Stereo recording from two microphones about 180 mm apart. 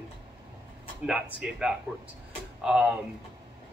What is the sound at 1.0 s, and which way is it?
Speech, 5° right (ahead or behind).